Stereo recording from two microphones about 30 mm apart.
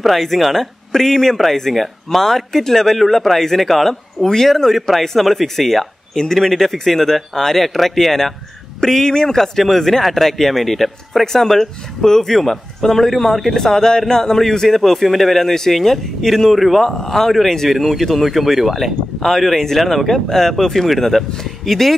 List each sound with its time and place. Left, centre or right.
0.0 s a man's voice: centre
0.9 s a man's voice: centre
9.4 s a man's voice: centre
16.5 s a man's voice: centre
16.8 s a man's voice: centre
17.3 s a man's voice: centre